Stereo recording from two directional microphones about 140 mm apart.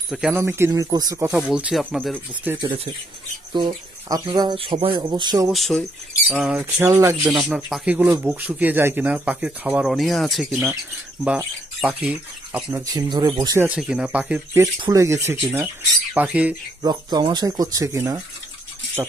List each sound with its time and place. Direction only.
0.1 s speech: 5° right (ahead or behind)
0.4 s speech: 20° right (ahead or behind)
1.5 s speech: 5° right (ahead or behind)
2.6 s speech: 40° right (ahead or behind)
5.5 s speech: centre (ahead or behind)
6.6 s speech: 20° right (ahead or behind)
7.4 s speech: 5° right (ahead or behind)
11.8 s speech: 5° right (ahead or behind)
12.8 s speech: 25° right (ahead or behind)
13.7 s speech: 5° right (ahead or behind)
14.8 s speech: 25° right (ahead or behind)
15.6 s speech: 5° right (ahead or behind)
16.8 s speech: 30° right (ahead or behind)